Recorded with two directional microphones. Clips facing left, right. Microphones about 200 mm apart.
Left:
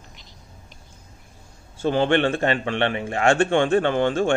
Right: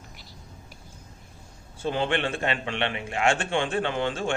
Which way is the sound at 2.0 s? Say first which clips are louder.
Left 8 dB; 45° left (ahead or behind).